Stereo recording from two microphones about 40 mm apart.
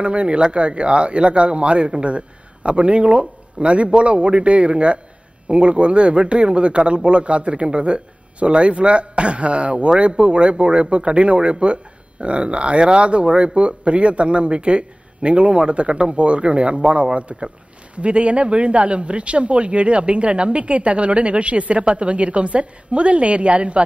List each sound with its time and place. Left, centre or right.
0.0 s a man's voice: right